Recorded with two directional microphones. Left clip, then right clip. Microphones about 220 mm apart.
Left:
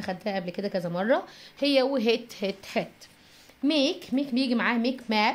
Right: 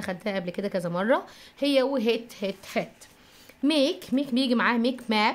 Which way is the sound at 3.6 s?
25° right (ahead or behind).